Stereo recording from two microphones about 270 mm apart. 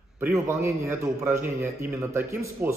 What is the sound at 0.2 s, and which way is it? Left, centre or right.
A man's voice, centre.